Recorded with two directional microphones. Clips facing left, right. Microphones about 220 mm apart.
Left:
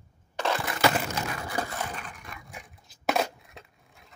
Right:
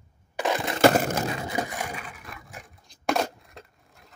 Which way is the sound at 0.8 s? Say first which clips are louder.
Right 9 dB; 45° right (ahead or behind).